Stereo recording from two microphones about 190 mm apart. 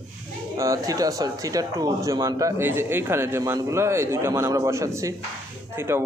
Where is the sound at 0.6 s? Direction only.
15° right (ahead or behind).